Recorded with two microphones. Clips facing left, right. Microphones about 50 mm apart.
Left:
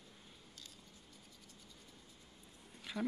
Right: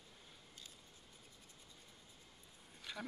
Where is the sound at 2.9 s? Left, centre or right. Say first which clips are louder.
Left 6 dB; centre.